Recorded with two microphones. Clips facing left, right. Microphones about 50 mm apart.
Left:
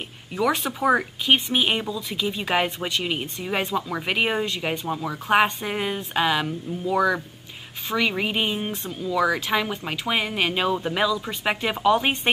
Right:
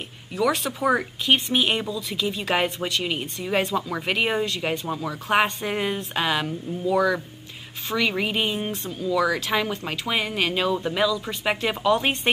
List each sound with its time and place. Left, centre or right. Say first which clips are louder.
0.3 s speech: even; centre